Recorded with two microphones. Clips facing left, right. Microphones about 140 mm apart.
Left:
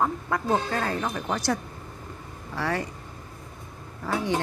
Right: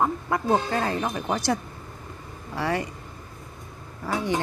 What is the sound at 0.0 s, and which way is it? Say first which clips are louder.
Speech: right 2 dB; 15° right (ahead or behind).